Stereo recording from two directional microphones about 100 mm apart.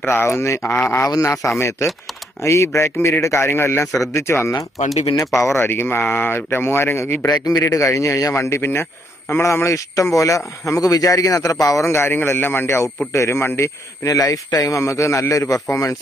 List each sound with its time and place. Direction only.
0.0 s speech: 25° left (ahead or behind)
7.2 s speech: 40° left (ahead or behind)